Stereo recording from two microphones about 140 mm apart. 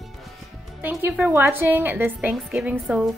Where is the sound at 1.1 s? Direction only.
15° right (ahead or behind).